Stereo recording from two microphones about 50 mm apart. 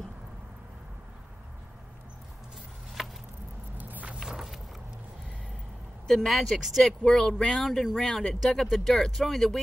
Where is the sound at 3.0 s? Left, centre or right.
Centre.